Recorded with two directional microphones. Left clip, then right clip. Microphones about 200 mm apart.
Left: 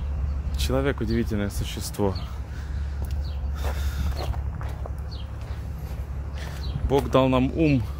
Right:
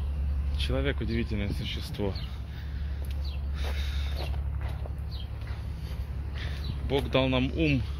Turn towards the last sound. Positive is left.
turn(degrees=25)  # may be behind; listen again after turning